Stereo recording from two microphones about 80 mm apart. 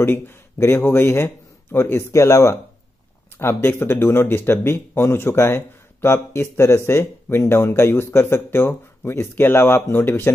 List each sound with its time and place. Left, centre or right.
0.0 s a man's voice: left